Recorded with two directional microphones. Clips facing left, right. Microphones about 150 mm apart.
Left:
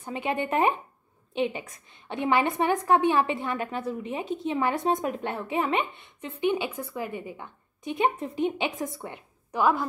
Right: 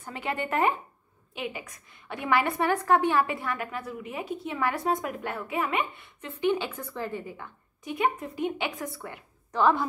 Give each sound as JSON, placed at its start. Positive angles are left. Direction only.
{"t": 0.0, "sound": "a woman's voice", "side_deg": 20}
{"t": 9.6, "sound": "a woman's voice", "side_deg": 5}